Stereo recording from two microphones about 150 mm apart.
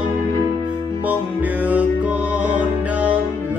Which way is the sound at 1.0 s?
10° right (ahead or behind).